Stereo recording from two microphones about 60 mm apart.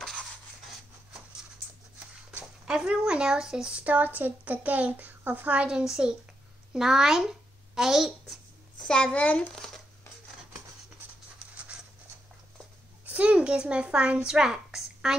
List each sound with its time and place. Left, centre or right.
2.6 s speech: centre
5.7 s a child's voice: centre
8.8 s a child's voice: centre
9.1 s a child's voice: left
13.0 s a sound: right